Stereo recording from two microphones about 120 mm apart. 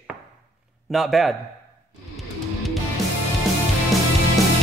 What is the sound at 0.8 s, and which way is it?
Speech, centre (ahead or behind).